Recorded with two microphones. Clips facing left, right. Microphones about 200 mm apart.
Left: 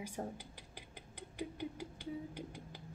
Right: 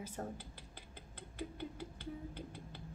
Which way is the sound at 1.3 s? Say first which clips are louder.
Left 2 dB; 15° left (ahead or behind).